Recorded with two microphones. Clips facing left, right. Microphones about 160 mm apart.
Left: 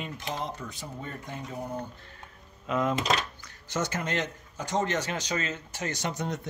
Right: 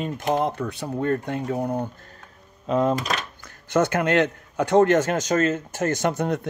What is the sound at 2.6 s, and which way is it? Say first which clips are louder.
Speech: right 7 dB; 35° right (ahead or behind).